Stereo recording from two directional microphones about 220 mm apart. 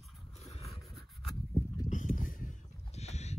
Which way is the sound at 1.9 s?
35° left (ahead or behind).